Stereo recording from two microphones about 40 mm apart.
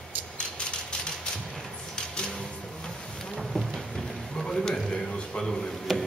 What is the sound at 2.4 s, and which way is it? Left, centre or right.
Vehicle, centre.